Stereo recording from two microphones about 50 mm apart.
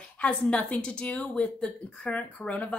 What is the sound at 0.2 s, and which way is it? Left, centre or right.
A woman's voice, left.